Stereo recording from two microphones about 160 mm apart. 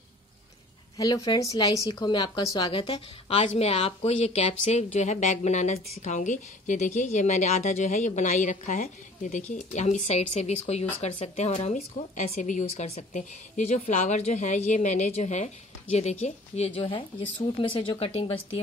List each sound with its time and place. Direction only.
0.9 s a woman's voice: 25° left (ahead or behind)